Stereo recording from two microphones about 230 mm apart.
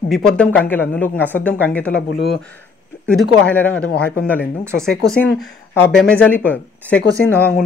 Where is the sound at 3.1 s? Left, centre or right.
Centre.